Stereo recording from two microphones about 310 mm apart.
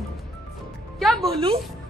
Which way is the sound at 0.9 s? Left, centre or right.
Centre.